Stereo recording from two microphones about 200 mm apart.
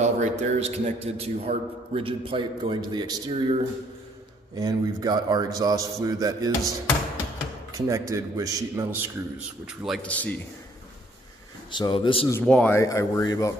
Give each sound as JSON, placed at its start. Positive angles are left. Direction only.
{"t": 0.0, "sound": "a man's voice", "side_deg": -35}
{"t": 7.7, "sound": "speech", "side_deg": -15}
{"t": 9.8, "sound": "speech", "side_deg": 5}
{"t": 11.7, "sound": "speech", "side_deg": 25}
{"t": 12.3, "sound": "speech", "side_deg": 5}